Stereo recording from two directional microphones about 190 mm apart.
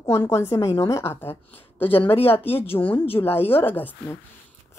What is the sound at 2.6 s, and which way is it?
Speech, 30° left (ahead or behind).